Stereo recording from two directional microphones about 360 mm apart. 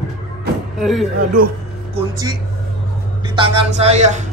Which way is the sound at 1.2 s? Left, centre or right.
Right.